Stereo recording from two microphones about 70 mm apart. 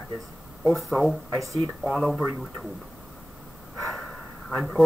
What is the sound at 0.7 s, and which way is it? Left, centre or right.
Speech, centre.